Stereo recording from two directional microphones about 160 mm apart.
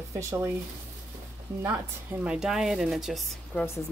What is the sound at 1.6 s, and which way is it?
Speech, 10° right (ahead or behind).